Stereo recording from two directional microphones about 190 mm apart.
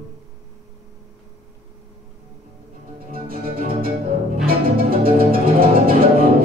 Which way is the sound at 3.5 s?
50° right (ahead or behind).